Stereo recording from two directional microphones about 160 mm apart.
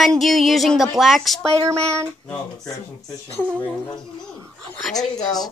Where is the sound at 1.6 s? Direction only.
20° right (ahead or behind).